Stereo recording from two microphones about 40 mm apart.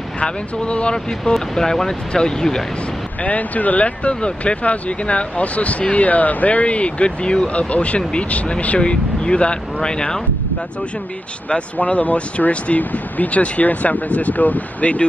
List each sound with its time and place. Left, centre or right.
0.2 s speech: left
1.3 s speech: centre
3.3 s speech: left
11.5 s speech: left